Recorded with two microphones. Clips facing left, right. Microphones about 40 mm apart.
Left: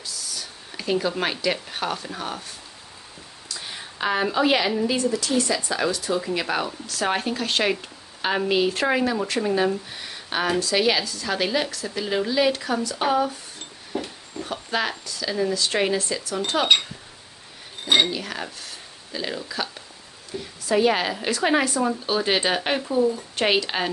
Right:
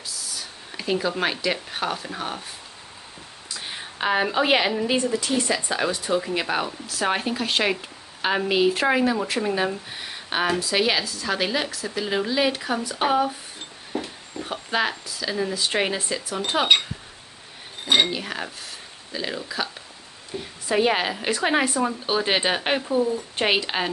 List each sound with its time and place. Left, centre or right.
0.0 s speech: centre
3.6 s a woman's voice: centre
6.4 s speech: centre
18.0 s speech: centre
20.3 s speech: right